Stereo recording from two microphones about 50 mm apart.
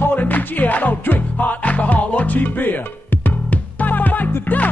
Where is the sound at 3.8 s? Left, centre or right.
Left.